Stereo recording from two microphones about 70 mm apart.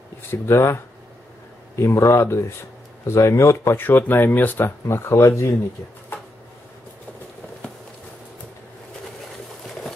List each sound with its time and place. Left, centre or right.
0.3 s speech: left
3.8 s speech: left